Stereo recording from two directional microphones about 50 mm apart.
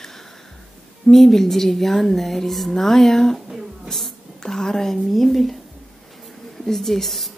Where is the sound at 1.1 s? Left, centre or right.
Centre.